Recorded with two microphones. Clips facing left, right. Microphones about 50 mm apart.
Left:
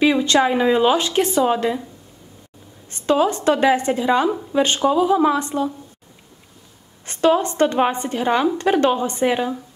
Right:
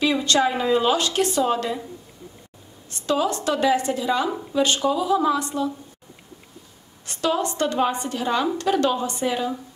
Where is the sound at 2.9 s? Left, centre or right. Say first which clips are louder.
Left 5 dB; left.